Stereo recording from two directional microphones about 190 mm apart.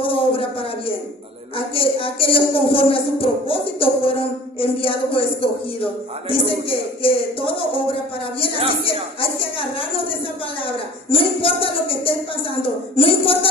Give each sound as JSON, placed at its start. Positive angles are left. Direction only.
{"t": 0.0, "sound": "a sound", "side_deg": 30}
{"t": 1.8, "sound": "speech", "side_deg": 30}
{"t": 9.6, "sound": "speech", "side_deg": 30}
{"t": 11.1, "sound": "speech", "side_deg": 30}